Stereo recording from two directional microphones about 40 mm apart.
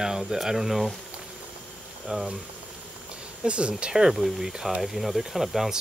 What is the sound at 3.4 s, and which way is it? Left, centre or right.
Speech, right.